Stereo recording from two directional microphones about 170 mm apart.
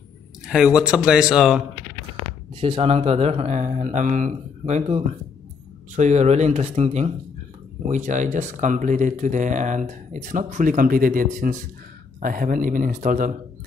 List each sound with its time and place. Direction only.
0.5 s speech: 5° right (ahead or behind)
2.6 s speech: 35° right (ahead or behind)